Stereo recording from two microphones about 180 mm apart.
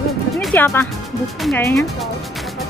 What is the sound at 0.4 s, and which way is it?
Music, 5° left (ahead or behind).